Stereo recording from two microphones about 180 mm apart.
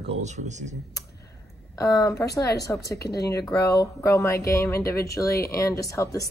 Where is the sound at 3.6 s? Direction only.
20° left (ahead or behind).